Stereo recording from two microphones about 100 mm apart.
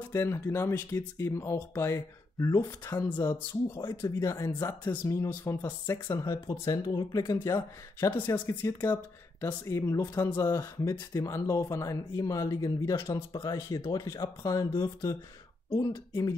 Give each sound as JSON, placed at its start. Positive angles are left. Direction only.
{"t": 0.1, "sound": "speech", "side_deg": 25}